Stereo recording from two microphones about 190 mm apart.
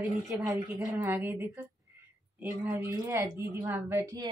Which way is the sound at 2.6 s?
15° right (ahead or behind).